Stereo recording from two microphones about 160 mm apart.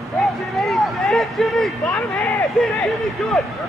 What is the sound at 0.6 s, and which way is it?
Speech, centre (ahead or behind).